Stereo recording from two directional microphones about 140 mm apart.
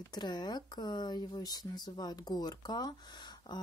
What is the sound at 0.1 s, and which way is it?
Speech, 30° left (ahead or behind).